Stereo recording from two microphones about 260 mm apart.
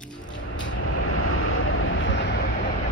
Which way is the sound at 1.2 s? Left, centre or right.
Left.